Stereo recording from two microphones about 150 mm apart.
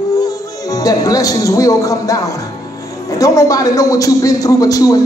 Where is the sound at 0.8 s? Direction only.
25° left (ahead or behind).